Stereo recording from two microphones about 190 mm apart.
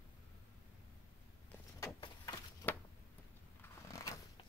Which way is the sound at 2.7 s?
10° left (ahead or behind).